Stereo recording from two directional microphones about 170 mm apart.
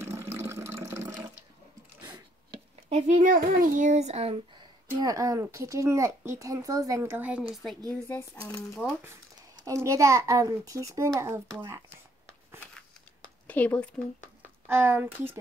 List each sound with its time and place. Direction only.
0.0 s water: 15° right (ahead or behind)
2.1 s a sound: 30° right (ahead or behind)
3.2 s a child's voice: 55° right (ahead or behind); by 7.4 s 10° right (ahead or behind)
7.9 s speech: 10° left (ahead or behind)
9.8 s a child's voice: 20° right (ahead or behind)
13.5 s speech: 10° left (ahead or behind)
14.7 s speech: 10° right (ahead or behind)